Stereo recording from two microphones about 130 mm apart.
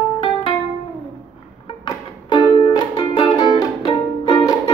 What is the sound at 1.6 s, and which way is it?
Music, 45° left (ahead or behind).